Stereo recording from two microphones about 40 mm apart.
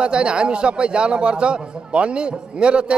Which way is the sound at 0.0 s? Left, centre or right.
Right.